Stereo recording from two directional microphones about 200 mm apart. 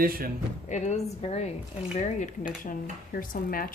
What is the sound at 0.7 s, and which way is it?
Speech, 35° left (ahead or behind).